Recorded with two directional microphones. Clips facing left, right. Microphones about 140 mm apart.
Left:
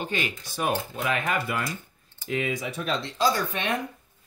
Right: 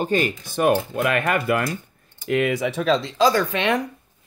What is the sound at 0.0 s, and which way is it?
Speech, 45° right (ahead or behind).